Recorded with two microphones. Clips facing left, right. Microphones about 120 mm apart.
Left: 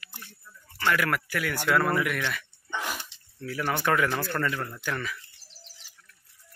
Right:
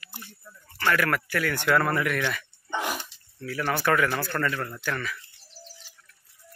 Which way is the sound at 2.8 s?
20° right (ahead or behind).